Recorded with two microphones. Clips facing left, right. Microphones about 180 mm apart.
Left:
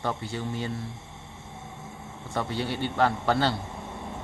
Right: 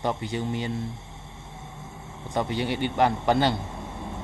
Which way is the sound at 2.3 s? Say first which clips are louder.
Right 3 dB; 15° right (ahead or behind).